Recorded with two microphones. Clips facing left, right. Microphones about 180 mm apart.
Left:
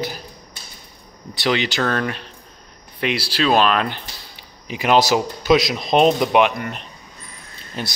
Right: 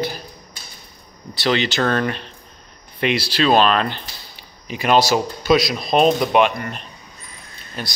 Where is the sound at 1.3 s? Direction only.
15° left (ahead or behind).